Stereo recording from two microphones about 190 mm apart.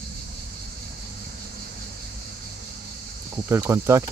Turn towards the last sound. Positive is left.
turn(degrees=-15)  # may be behind; listen again after turning